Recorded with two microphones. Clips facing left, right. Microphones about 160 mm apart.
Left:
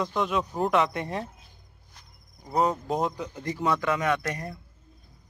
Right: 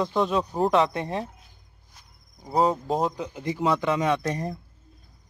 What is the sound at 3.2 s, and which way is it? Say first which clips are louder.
A man's voice: right 2 dB; 15° right (ahead or behind).